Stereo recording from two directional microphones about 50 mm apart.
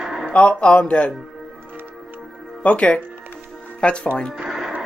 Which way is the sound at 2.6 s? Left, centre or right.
Left.